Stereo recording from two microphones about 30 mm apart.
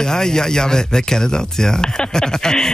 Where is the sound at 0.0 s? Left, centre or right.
Left.